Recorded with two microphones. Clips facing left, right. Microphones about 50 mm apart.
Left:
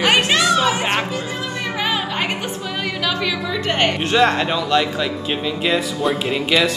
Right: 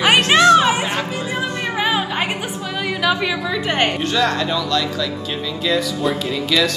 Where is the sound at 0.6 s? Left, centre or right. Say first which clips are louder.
Right 2 dB; right.